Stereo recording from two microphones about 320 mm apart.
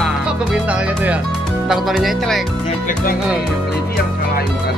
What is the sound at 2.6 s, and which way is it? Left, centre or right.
Speech, left.